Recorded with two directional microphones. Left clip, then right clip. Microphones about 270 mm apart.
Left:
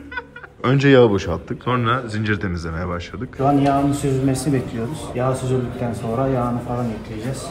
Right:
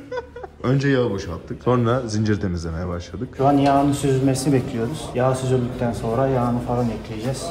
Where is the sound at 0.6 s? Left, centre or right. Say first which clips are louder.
Left 7 dB; centre.